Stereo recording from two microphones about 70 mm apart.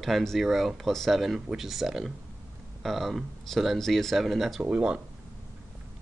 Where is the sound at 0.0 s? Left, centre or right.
Centre.